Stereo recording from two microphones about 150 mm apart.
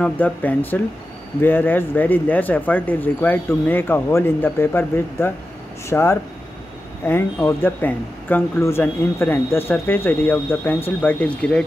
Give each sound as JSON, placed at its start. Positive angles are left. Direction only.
{"t": 0.0, "sound": "speech", "side_deg": 10}